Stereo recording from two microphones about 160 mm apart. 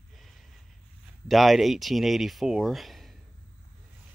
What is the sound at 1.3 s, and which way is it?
Speech, centre (ahead or behind).